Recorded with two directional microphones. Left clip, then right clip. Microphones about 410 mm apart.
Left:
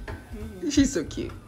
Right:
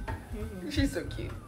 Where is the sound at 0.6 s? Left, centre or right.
Centre.